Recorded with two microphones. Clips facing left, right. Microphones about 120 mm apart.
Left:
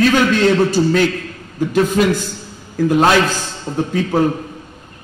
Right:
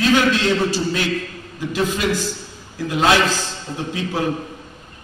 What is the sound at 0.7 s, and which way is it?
A man's voice, 50° left (ahead or behind).